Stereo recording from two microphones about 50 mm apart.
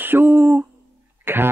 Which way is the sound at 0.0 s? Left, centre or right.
Right.